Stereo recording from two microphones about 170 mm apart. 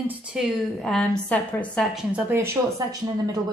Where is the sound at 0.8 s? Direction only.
Centre (ahead or behind).